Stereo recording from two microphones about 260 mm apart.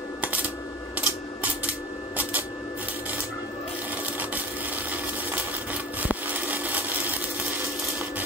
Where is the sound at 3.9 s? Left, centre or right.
Centre.